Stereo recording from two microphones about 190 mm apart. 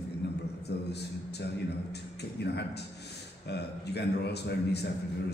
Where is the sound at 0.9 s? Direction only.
60° left (ahead or behind).